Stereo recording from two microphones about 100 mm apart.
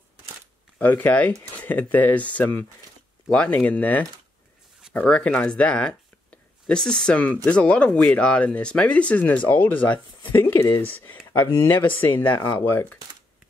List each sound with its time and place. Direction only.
0.7 s speech: 15° left (ahead or behind)